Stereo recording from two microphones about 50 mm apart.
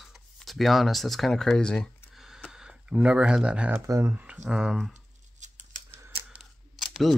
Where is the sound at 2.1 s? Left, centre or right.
Centre.